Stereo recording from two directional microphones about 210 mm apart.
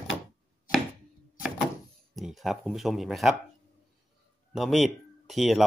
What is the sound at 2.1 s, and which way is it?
Speech, centre (ahead or behind).